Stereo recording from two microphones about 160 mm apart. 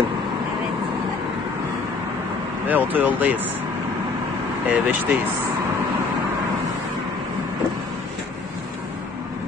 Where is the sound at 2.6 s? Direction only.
10° right (ahead or behind).